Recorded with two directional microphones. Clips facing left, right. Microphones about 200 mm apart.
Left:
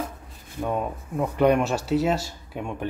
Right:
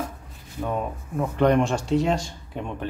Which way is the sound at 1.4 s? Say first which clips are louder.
Even; 10° left (ahead or behind).